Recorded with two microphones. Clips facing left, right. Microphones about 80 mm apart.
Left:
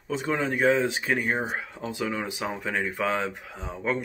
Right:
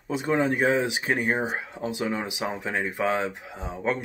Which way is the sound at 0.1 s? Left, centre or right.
Centre.